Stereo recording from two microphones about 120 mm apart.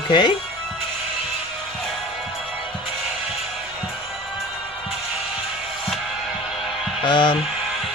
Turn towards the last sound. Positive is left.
turn(degrees=40)  # may be behind; listen again after turning